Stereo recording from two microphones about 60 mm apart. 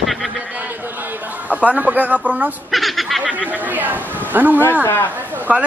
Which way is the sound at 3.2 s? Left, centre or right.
Right.